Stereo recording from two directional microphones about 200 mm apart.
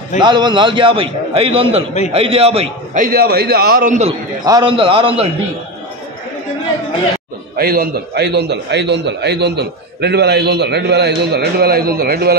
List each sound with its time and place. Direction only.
0.2 s a man's voice: 20° right (ahead or behind)
3.0 s a man's voice: 50° right (ahead or behind)
4.4 s a man's voice: 20° right (ahead or behind)
7.5 s a man's voice: 50° right (ahead or behind)